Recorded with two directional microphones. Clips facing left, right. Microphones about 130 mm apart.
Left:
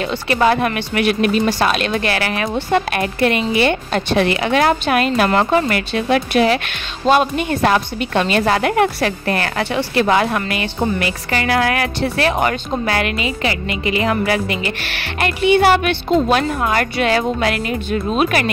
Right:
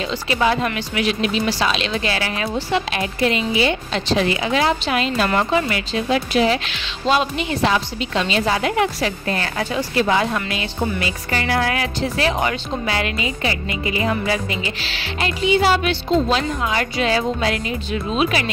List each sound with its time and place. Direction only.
0.0 s speech: 55° left (ahead or behind)